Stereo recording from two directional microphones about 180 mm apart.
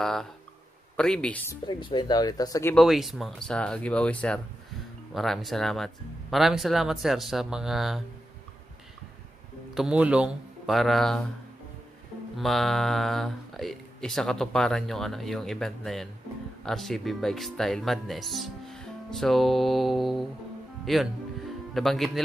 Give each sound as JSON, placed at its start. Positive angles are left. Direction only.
{"t": 0.0, "sound": "speech", "side_deg": 5}
{"t": 1.7, "sound": "speech", "side_deg": 25}
{"t": 2.7, "sound": "speech", "side_deg": 0}
{"t": 9.8, "sound": "speech", "side_deg": -5}
{"t": 12.4, "sound": "speech", "side_deg": 0}